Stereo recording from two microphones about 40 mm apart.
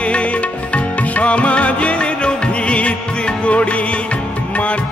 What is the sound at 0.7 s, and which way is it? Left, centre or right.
Music, left.